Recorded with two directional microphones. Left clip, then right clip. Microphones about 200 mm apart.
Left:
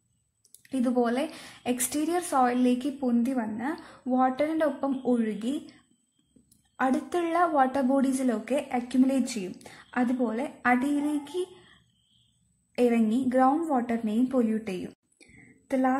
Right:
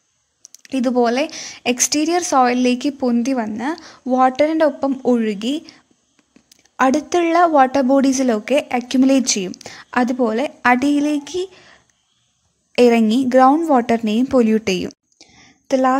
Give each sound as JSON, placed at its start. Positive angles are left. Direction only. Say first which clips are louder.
{"t": 0.6, "sound": "a woman's voice", "louder": "right 10 dB", "side_deg": -40}
{"t": 6.8, "sound": "a woman's voice", "louder": "right 11 dB", "side_deg": -35}
{"t": 12.7, "sound": "a woman's voice", "louder": "right 12 dB", "side_deg": -45}